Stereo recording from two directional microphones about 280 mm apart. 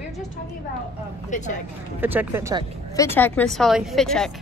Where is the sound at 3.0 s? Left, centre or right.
Centre.